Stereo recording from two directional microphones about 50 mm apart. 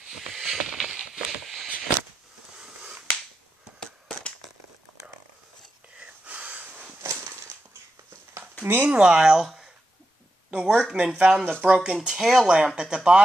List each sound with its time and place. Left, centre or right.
0.0 s a sound: centre
5.9 s wheeze: right
8.6 s speech: right
8.9 s speech: centre
10.5 s speech: centre